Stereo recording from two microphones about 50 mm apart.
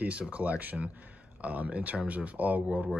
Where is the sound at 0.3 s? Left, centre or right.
Right.